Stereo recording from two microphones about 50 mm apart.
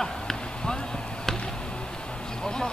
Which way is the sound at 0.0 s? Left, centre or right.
Centre.